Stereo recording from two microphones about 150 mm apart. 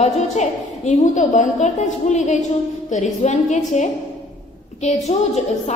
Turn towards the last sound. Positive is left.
turn(degrees=45)  # may be behind; listen again after turning